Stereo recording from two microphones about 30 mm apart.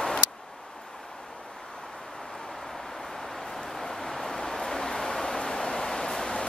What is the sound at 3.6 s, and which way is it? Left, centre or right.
Vehicle, centre.